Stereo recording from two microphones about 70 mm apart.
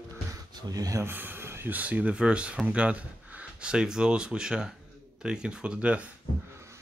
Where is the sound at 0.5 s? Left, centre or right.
Right.